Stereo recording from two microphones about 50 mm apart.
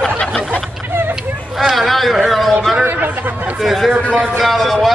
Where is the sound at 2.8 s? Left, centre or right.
Right.